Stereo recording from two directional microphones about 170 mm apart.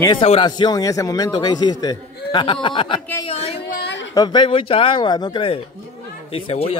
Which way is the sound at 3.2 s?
35° left (ahead or behind).